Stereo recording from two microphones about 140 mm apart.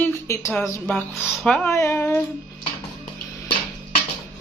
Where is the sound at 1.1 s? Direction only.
Centre (ahead or behind).